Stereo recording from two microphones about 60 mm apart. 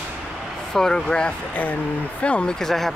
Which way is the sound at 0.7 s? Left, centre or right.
Centre.